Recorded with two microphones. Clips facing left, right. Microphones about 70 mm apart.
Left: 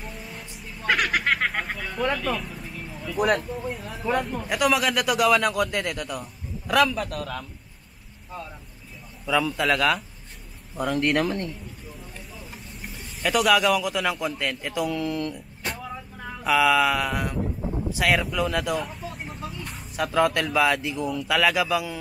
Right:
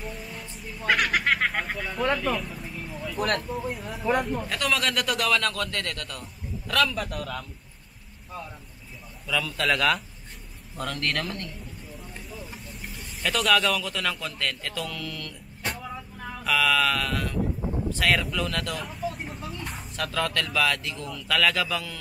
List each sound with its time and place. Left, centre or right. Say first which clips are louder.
0.0 s a sound: right 1 dB; centre
3.4 s speech: even; centre
4.5 s a man's voice: left 4 dB; centre
7.0 s speech: left 2 dB; centre
9.2 s a man's voice: left 4 dB; centre
10.8 s a man's voice: left 7 dB; centre
12.3 s speech: right 1 dB; centre; by 15.3 s left
15.6 s vehicle: even; centre
16.4 s a man's voice: left 4 dB; centre
18.8 s vehicle: even; centre
20.0 s a man's voice: left 6 dB; centre